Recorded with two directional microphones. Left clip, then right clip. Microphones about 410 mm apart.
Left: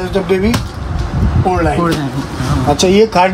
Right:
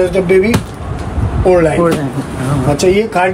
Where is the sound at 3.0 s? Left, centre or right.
Centre.